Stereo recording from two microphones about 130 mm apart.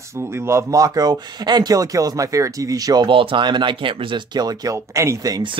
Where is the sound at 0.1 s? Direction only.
20° right (ahead or behind).